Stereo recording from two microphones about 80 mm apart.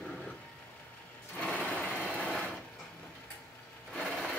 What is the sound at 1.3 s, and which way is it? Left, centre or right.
Sewing machine, centre.